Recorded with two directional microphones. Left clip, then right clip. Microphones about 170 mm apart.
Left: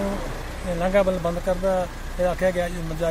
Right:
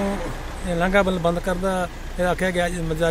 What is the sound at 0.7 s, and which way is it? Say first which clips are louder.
Speech: right 1 dB; 80° right.